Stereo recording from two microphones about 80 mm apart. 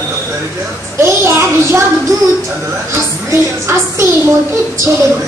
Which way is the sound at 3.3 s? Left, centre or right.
Right.